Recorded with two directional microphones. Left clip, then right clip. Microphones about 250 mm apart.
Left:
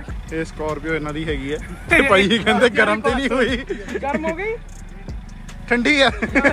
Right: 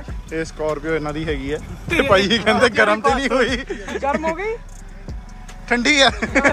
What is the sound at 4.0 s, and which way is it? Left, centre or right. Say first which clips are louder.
Speech: right 3 dB; right.